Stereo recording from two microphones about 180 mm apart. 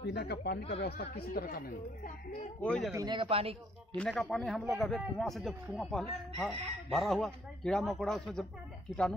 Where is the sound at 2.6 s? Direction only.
5° left (ahead or behind).